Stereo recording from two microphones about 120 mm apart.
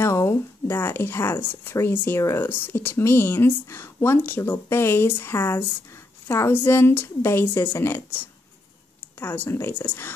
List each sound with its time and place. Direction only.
0.0 s a sound: 20° left (ahead or behind)
1.6 s speech: 20° left (ahead or behind)
9.2 s speech: 15° left (ahead or behind)